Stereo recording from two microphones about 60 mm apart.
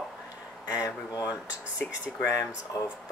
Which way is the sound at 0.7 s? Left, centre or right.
Left.